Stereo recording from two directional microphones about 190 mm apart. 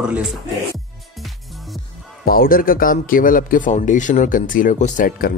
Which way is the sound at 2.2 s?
50° left (ahead or behind).